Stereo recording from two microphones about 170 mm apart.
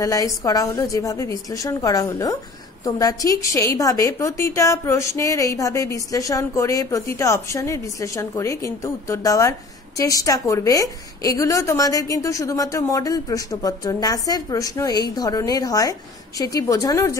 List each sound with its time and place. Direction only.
0.0 s a woman's voice: 20° left (ahead or behind)